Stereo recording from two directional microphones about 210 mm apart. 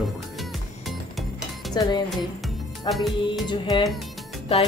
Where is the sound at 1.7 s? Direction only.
20° left (ahead or behind).